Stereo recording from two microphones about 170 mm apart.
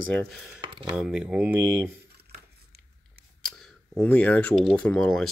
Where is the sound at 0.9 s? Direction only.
5° right (ahead or behind).